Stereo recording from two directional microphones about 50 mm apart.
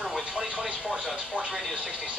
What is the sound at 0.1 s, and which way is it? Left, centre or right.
Television, centre.